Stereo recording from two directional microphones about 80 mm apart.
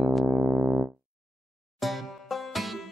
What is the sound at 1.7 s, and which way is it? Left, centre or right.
Music, centre.